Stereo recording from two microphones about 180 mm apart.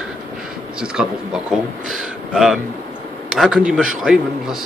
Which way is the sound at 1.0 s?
5° right (ahead or behind).